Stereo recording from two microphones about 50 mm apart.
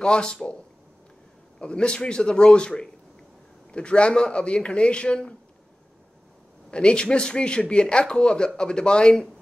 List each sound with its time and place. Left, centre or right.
0.0 s speech: centre
1.6 s a man's voice: centre
6.7 s a man's voice: centre